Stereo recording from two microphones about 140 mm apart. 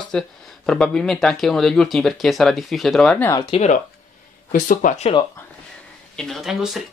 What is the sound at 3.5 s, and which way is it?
Speech, 45° left (ahead or behind).